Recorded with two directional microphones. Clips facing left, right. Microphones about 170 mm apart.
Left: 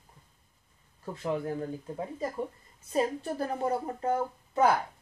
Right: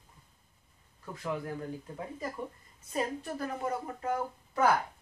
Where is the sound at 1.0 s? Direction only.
25° left (ahead or behind).